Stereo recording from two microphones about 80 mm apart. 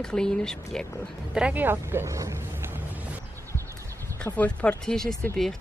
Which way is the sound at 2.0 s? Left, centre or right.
Right.